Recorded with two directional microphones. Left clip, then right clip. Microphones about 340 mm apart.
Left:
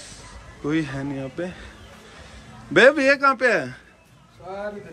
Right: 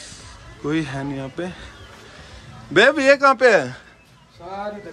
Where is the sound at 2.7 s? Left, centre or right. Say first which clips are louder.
Right 1 dB; centre.